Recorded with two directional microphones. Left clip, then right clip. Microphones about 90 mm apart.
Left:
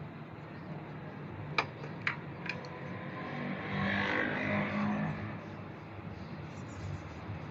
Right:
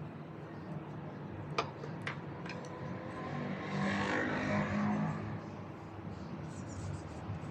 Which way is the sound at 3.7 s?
10° left (ahead or behind).